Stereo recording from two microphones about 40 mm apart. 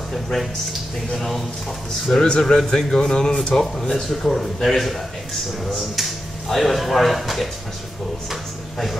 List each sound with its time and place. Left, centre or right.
0.1 s a man's voice: centre
2.2 s a man's voice: left; by 7.4 s centre